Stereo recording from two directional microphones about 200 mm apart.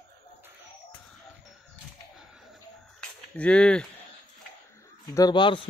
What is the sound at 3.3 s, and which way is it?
Speech, 5° left (ahead or behind).